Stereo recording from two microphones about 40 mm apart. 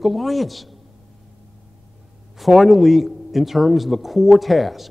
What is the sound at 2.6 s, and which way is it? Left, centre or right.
A man's voice, centre.